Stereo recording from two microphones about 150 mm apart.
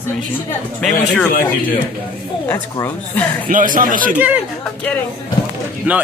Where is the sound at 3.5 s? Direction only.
65° right (ahead or behind).